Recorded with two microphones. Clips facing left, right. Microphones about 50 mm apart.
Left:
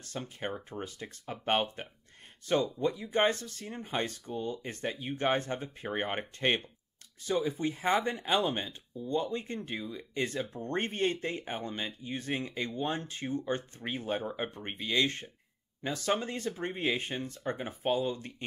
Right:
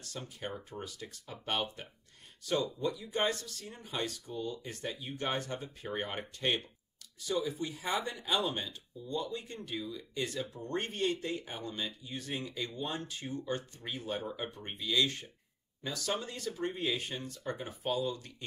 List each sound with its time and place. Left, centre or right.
0.0 s speech: left